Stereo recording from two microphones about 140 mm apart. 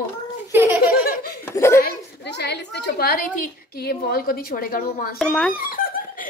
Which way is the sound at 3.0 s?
90° left.